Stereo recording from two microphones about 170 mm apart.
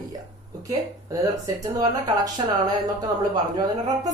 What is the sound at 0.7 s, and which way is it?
Speech, 20° right (ahead or behind).